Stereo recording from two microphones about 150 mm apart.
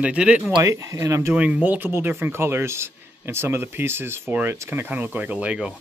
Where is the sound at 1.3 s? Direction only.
10° right (ahead or behind).